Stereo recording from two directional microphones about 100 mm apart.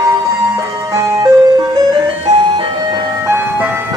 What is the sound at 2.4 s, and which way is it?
Vehicle, 55° right (ahead or behind).